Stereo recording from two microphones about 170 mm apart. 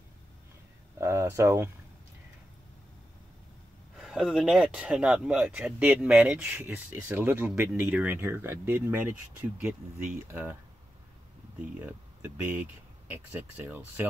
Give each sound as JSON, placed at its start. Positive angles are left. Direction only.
{"t": 0.9, "sound": "speech", "side_deg": -15}
{"t": 3.9, "sound": "speech", "side_deg": 0}